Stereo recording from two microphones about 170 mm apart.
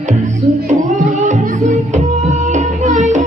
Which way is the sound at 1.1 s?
45° right (ahead or behind).